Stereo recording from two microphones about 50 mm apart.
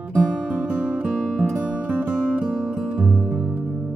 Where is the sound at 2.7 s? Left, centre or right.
Centre.